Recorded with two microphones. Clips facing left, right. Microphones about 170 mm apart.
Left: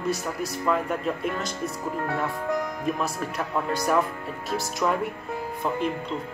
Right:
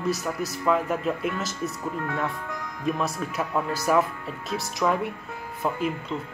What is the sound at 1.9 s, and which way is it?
Speech, 40° left (ahead or behind).